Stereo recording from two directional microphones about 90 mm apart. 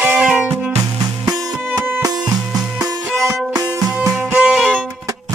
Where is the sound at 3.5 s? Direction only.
45° right (ahead or behind).